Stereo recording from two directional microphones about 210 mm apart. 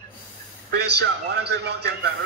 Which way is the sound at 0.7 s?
55° right (ahead or behind).